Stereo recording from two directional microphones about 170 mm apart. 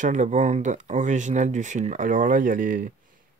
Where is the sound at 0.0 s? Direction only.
45° right (ahead or behind).